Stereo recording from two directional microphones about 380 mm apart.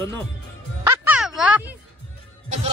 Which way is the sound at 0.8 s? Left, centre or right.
Centre.